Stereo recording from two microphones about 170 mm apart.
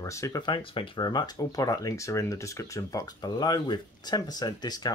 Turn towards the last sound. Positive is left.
turn(degrees=25)  # may be behind; listen again after turning